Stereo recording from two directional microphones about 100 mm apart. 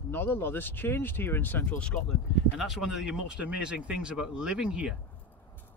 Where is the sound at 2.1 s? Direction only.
Centre (ahead or behind).